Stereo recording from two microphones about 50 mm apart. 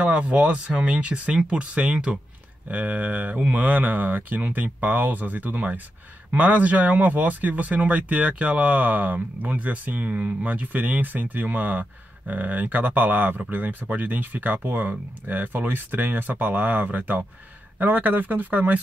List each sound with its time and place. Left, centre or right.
0.0 s speech: right